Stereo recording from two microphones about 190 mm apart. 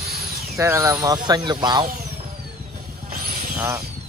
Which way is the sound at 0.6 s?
15° right (ahead or behind).